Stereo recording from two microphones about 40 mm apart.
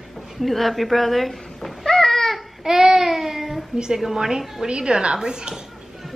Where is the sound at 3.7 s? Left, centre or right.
Centre.